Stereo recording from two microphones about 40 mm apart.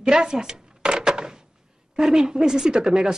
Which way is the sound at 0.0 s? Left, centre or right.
Centre.